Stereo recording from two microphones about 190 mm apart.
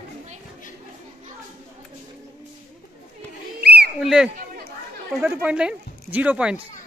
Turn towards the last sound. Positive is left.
turn(degrees=-5)  # may be behind; listen again after turning